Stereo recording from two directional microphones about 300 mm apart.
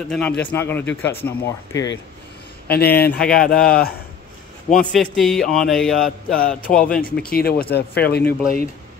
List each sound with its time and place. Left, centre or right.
0.1 s speech: centre
2.7 s a man's voice: left
3.1 s speech: centre
3.4 s speech: left
4.6 s speech: centre
7.2 s a man's voice: left